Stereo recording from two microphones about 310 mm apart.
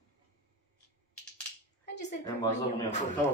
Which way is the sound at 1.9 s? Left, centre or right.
Left.